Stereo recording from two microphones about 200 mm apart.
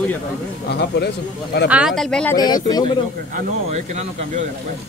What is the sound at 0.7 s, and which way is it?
Speech, 55° left (ahead or behind).